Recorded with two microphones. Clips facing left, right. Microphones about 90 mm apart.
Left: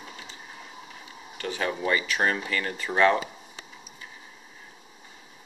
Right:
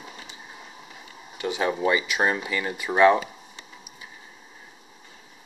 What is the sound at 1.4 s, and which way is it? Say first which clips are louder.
Speech: right 4 dB; 15° right (ahead or behind).